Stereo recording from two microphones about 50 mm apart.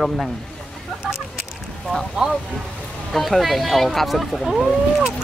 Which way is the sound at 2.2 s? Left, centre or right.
Centre.